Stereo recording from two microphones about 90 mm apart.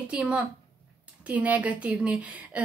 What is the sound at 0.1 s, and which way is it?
Speech, 10° right (ahead or behind).